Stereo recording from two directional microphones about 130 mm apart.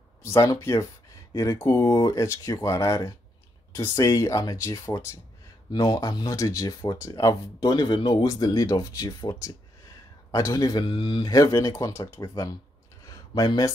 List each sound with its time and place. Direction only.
0.2 s speech: 20° left (ahead or behind)
10.8 s speech: 40° left (ahead or behind)
13.0 s a sound: 30° left (ahead or behind)